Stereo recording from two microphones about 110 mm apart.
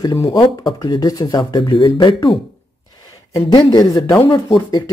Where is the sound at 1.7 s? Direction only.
50° left (ahead or behind).